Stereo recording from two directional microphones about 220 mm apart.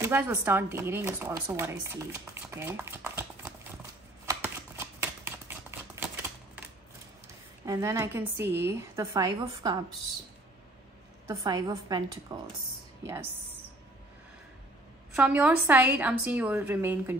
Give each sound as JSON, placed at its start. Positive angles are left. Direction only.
{"t": 0.0, "sound": "speech", "side_deg": -10}
{"t": 4.3, "sound": "a sound", "side_deg": -10}
{"t": 7.6, "sound": "speech", "side_deg": -15}
{"t": 11.2, "sound": "speech", "side_deg": -15}
{"t": 15.1, "sound": "speech", "side_deg": -5}